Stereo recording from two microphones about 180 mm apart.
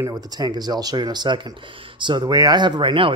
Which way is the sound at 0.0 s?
20° right (ahead or behind).